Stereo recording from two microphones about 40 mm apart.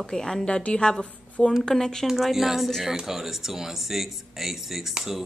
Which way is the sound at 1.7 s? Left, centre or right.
Centre.